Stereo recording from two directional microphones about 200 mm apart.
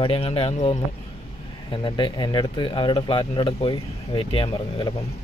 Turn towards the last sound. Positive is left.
turn(degrees=20)  # may be behind; listen again after turning